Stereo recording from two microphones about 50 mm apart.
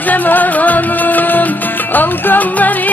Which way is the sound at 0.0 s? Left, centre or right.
Left.